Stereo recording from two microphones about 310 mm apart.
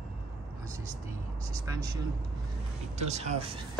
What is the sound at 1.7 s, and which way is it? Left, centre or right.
Speech, centre.